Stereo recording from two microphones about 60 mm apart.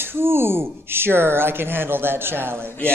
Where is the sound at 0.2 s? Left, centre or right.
Right.